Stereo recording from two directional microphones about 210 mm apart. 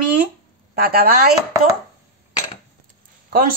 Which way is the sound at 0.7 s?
45° right (ahead or behind).